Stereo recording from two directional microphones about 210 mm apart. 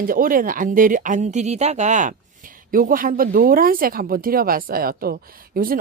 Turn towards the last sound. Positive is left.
turn(degrees=-45)  # may be behind; listen again after turning